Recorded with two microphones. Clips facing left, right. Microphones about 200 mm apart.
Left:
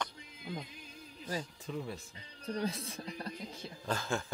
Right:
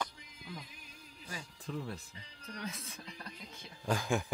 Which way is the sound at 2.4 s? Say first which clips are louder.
Left 8 dB; 30° left (ahead or behind).